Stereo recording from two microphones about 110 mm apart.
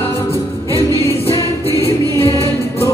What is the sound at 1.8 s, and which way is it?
Music, 60° left (ahead or behind).